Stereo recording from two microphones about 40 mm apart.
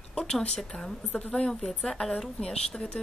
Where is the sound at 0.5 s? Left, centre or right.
Centre.